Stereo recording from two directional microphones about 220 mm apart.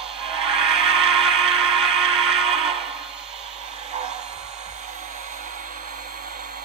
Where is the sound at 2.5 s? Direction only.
25° right (ahead or behind).